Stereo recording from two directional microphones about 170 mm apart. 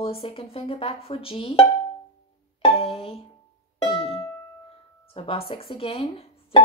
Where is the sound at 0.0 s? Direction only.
35° left (ahead or behind).